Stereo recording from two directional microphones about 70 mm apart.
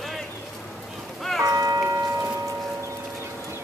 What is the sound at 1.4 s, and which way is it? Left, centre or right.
Music, right.